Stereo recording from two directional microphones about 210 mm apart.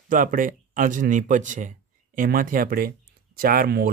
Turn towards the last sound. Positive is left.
turn(degrees=-45)  # may be behind; listen again after turning